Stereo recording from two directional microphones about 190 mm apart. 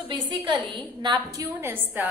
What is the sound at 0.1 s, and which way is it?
A woman's voice, 25° right (ahead or behind).